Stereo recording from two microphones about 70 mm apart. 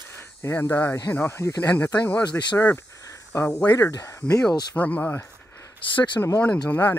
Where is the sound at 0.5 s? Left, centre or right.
Left.